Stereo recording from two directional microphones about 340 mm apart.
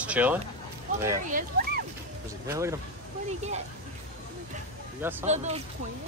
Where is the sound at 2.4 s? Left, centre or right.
Centre.